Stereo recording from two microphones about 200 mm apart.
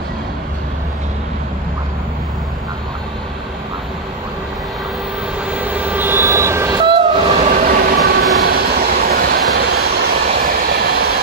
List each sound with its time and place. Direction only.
5.4 s vehicle: 5° right (ahead or behind)
6.8 s train: 25° right (ahead or behind); by 11.1 s 50° right (ahead or behind)